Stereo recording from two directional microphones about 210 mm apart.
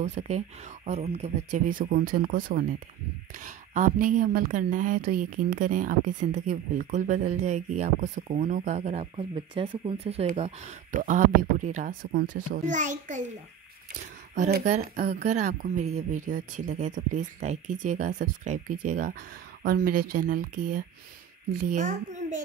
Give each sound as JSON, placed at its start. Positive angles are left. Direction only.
{"t": 0.0, "sound": "a woman's voice", "side_deg": -35}
{"t": 14.3, "sound": "a woman's voice", "side_deg": -35}